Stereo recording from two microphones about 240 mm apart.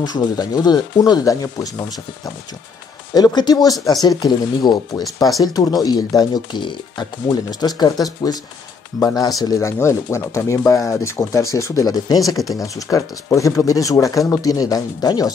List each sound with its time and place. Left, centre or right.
0.0 s speech: centre
3.2 s speech: centre